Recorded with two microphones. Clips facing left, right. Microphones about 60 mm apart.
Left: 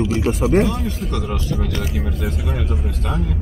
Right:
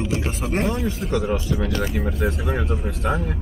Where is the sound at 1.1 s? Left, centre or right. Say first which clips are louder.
Right 2 dB; right.